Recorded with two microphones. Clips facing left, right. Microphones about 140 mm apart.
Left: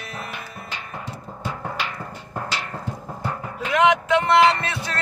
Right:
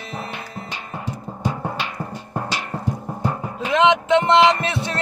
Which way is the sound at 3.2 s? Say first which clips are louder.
Right 3 dB; 20° right (ahead or behind).